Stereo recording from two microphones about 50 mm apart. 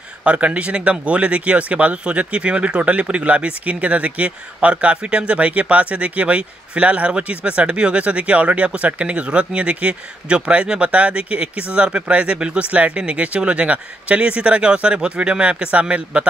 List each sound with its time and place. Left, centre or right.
0.2 s speech: right